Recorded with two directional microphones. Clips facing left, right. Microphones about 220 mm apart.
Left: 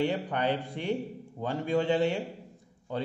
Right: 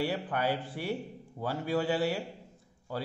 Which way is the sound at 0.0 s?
5° right (ahead or behind).